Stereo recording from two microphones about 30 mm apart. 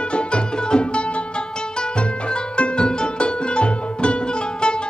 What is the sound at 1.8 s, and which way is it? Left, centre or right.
Music, left.